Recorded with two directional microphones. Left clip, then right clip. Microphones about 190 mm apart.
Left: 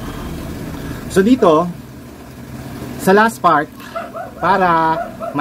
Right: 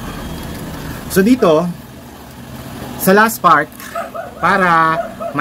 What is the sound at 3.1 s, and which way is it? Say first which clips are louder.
Speech: right 2 dB; 25° right (ahead or behind).